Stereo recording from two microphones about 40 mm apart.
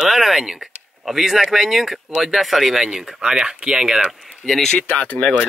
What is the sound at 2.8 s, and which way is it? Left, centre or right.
Speech, centre.